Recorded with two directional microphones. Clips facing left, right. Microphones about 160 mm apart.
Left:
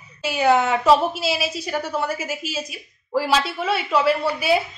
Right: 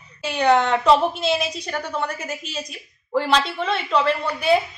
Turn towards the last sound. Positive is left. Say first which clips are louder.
# even
turn(degrees=5)  # may be behind; listen again after turning